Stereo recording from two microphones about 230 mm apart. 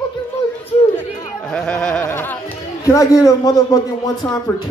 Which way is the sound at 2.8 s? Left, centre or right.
Centre.